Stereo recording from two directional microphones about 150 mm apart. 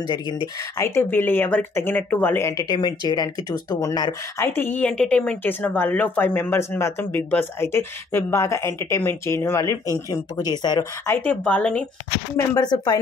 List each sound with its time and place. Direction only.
0.7 s speech: 15° left (ahead or behind)
11.1 s speech: 10° left (ahead or behind)
12.4 s speech: 25° left (ahead or behind)